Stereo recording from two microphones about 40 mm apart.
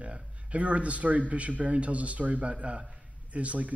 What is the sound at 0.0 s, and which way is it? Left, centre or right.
A man's voice, right.